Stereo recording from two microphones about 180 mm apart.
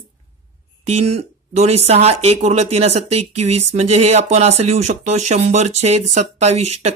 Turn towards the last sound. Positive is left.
turn(degrees=-40)  # may be behind; listen again after turning